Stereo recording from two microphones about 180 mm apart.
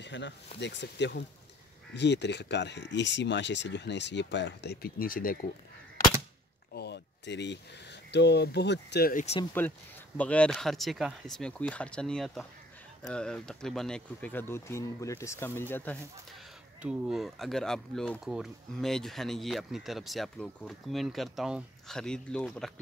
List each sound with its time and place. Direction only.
0.0 s speech: 80° left; by 5.5 s 50° left (ahead or behind)
6.7 s speech: 65° left (ahead or behind)
9.1 s speech: 40° left (ahead or behind)
9.6 s speech: 10° left (ahead or behind)
16.8 s speech: centre (ahead or behind)